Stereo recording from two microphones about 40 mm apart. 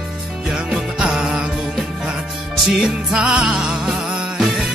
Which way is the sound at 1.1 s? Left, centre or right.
Centre.